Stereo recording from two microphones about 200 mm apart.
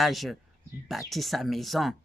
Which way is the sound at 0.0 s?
Centre (ahead or behind).